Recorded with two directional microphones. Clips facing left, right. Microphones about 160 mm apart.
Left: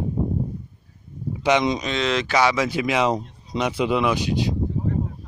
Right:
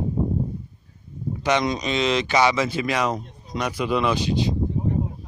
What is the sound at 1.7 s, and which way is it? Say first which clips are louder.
Speech: right 1 dB; 5° right (ahead or behind).